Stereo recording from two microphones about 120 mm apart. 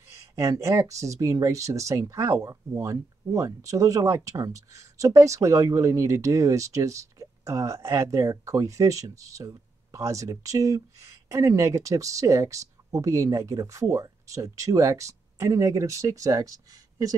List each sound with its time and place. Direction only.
0.1 s speech: 25° right (ahead or behind)